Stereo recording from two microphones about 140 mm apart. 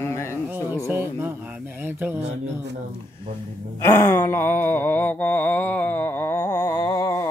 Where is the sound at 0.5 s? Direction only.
15° right (ahead or behind).